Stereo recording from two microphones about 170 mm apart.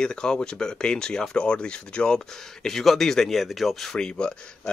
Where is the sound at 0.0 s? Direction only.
5° left (ahead or behind).